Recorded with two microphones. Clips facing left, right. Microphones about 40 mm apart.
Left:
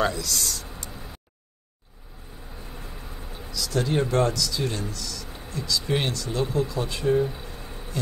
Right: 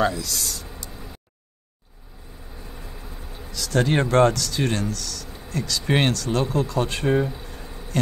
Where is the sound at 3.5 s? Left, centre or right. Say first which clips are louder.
Right 3 dB; right.